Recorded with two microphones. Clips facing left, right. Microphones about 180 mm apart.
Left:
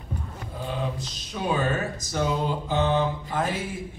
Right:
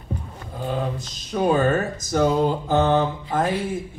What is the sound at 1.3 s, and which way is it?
A man's voice, 50° right (ahead or behind).